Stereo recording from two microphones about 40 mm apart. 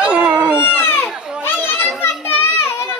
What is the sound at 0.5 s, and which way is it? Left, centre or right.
Baby cry, left.